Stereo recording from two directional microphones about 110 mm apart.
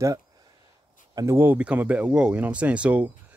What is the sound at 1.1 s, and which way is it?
Speech, 25° right (ahead or behind).